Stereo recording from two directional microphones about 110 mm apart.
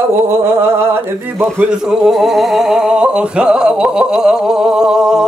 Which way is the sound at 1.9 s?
5° right (ahead or behind).